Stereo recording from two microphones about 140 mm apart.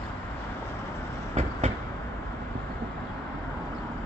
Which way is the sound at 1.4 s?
50° right (ahead or behind).